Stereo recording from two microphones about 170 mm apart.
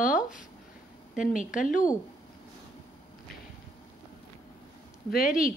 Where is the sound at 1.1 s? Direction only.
50° left (ahead or behind).